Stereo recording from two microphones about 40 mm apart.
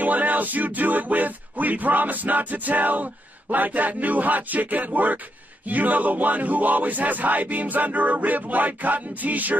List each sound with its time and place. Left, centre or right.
0.0 s music: right